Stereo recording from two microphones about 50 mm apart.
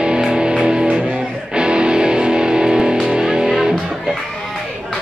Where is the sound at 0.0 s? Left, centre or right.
Centre.